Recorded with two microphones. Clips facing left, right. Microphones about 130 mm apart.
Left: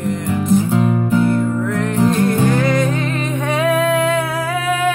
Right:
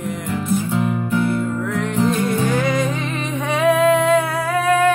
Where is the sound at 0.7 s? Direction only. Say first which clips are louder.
Left 4 dB; 25° left (ahead or behind).